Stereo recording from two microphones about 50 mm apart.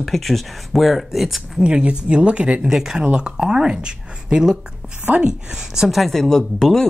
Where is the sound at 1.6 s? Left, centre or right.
Centre.